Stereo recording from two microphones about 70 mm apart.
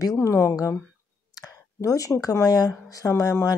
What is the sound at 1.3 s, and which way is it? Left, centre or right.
Speech, left.